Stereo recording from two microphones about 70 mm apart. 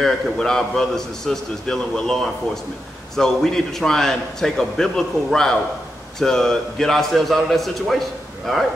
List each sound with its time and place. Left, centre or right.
0.0 s a man's voice: centre